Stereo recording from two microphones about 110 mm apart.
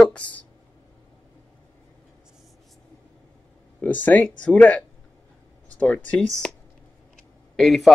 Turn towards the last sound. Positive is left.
turn(degrees=0)  # may be behind; listen again after turning